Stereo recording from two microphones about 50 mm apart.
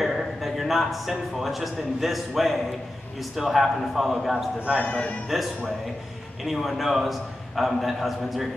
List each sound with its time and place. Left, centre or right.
0.0 s a man's voice: centre
4.8 s a man's voice: left
5.3 s a man's voice: centre